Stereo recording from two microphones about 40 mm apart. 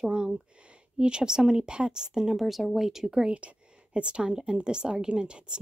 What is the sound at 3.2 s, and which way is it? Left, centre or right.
A woman's voice, right.